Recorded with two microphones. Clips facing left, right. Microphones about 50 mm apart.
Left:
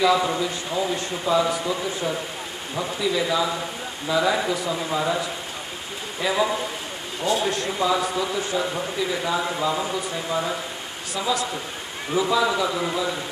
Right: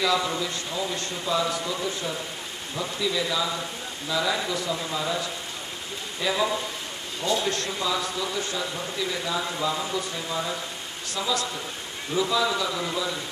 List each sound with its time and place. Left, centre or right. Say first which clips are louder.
0.0 s a man's voice: left 5 dB; centre
6.2 s a man's voice: left 3 dB; centre
7.8 s a man's voice: left 7 dB; left